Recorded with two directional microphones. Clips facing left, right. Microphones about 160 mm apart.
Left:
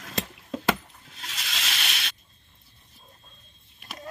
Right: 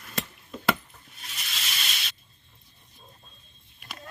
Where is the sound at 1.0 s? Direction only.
90° left.